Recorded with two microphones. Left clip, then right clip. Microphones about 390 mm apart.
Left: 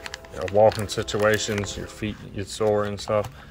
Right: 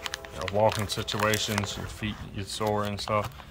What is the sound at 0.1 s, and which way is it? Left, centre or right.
Speech, centre.